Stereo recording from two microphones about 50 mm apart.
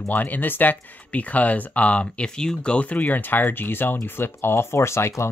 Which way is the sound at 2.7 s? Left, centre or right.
Left.